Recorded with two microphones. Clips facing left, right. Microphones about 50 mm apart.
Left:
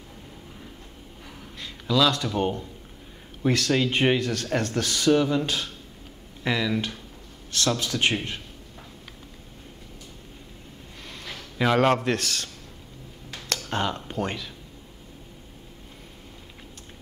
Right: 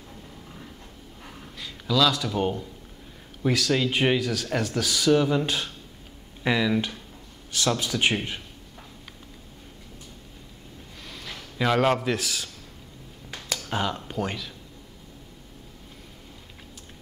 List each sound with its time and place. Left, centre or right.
1.6 s a man's voice: centre
5.3 s speech: centre
11.1 s a sound: centre
11.5 s a man's voice: centre
13.5 s speech: centre